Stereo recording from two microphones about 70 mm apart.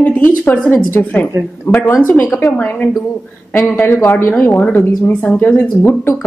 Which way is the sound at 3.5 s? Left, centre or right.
Left.